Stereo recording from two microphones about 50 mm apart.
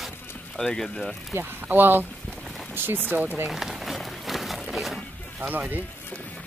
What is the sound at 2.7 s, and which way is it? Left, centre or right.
Rain on surface, right.